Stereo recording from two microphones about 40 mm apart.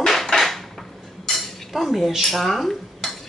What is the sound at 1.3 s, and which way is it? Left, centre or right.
Dishes, centre.